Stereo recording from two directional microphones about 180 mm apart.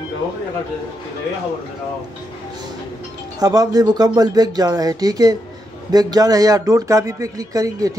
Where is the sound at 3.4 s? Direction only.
20° right (ahead or behind).